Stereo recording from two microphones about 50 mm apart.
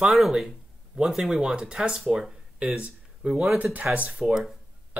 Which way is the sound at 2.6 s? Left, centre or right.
Right.